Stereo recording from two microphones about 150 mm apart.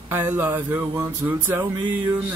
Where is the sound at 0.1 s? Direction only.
15° right (ahead or behind).